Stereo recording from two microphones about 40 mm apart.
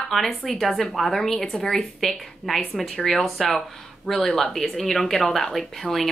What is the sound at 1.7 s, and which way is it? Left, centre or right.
Speech, centre.